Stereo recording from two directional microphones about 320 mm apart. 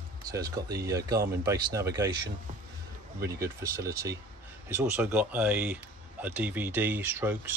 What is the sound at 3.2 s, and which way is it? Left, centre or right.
A man's voice, centre.